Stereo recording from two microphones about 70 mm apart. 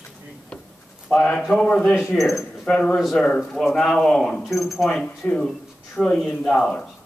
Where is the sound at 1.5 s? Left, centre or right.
Centre.